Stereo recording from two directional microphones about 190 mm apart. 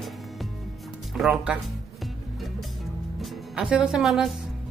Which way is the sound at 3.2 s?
5° right (ahead or behind).